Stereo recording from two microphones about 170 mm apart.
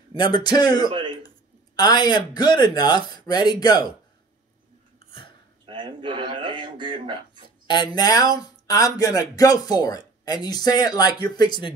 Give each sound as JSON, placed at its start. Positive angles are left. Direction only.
{"t": 0.1, "sound": "speech", "side_deg": 25}
{"t": 0.8, "sound": "speech", "side_deg": -30}
{"t": 1.8, "sound": "speech", "side_deg": 25}
{"t": 5.7, "sound": "speech", "side_deg": -30}
{"t": 7.6, "sound": "speech", "side_deg": 25}